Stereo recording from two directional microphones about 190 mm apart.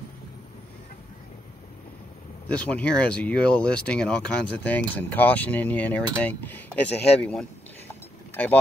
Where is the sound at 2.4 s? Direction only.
5° left (ahead or behind).